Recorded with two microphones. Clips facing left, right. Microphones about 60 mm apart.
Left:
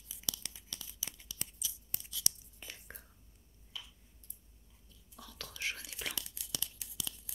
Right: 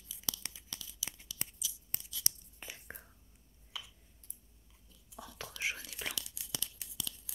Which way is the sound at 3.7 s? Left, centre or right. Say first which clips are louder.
Right 2 dB; right.